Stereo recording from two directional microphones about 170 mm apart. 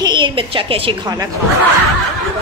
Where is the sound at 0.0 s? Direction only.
25° right (ahead or behind).